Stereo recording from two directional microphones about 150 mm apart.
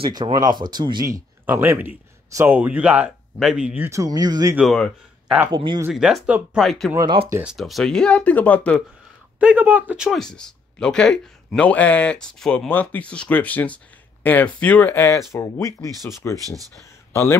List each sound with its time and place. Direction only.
0.0 s speech: 30° right (ahead or behind)
4.6 s speech: centre (ahead or behind)
5.5 s speech: 30° right (ahead or behind)
5.9 s speech: 5° right (ahead or behind)
9.4 s speech: 10° right (ahead or behind); by 15.9 s 20° left (ahead or behind)
16.4 s speech: 25° right (ahead or behind)
17.1 s speech: 15° left (ahead or behind)